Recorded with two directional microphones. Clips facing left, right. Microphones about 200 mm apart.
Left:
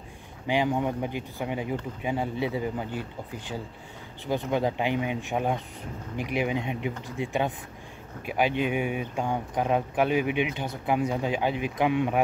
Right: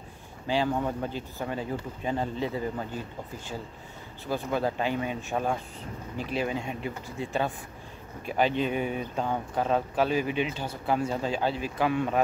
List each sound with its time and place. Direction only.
0.5 s speech: 15° left (ahead or behind)
4.3 s speech: 20° left (ahead or behind)